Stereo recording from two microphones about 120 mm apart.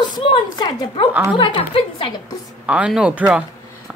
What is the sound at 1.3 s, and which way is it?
Speech, 45° left (ahead or behind).